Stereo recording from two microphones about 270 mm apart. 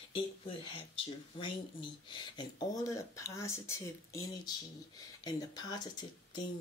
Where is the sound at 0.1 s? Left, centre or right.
Centre.